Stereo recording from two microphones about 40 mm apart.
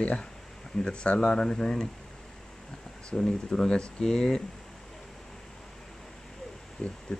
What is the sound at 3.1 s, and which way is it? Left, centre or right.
Speech, centre.